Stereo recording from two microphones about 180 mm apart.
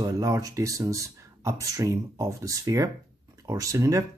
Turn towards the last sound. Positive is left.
turn(degrees=-15)  # may be behind; listen again after turning